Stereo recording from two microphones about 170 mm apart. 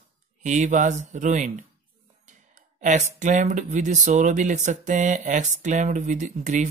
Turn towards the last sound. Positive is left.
turn(degrees=-45)  # may be behind; listen again after turning